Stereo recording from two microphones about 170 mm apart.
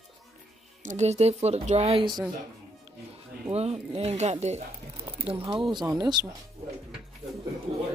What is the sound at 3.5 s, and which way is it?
A woman's voice, 35° right (ahead or behind).